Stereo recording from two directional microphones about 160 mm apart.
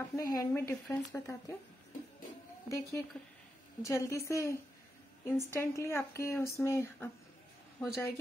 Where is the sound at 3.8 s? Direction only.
20° left (ahead or behind).